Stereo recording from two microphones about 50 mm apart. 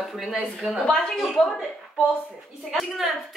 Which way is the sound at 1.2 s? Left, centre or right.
Centre.